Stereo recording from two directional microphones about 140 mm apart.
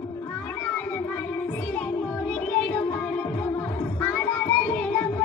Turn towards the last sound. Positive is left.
turn(degrees=10)  # may be behind; listen again after turning